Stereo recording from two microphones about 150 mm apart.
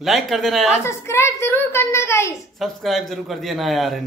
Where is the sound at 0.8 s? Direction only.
15° left (ahead or behind).